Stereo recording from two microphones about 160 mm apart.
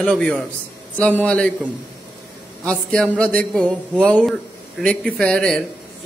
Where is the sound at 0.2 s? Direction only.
5° left (ahead or behind).